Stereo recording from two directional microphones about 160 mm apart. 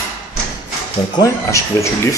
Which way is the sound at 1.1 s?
20° left (ahead or behind).